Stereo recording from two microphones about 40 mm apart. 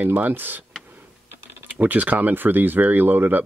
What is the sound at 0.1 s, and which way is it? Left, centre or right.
Speech, right.